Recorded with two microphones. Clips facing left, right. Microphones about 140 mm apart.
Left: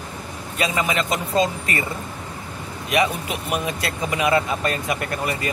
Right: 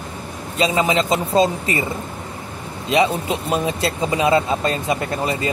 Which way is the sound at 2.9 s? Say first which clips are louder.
Right 4 dB; 25° right (ahead or behind).